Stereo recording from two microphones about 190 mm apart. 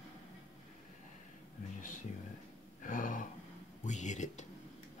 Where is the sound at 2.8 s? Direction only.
45° left (ahead or behind).